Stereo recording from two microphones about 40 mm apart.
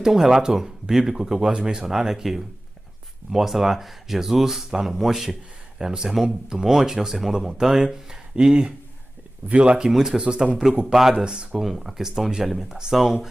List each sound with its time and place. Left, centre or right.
0.0 s speech: centre
1.3 s speech: right
1.9 s speech: centre
8.4 s speech: right
9.8 s speech: centre
10.2 s speech: right
10.9 s speech: centre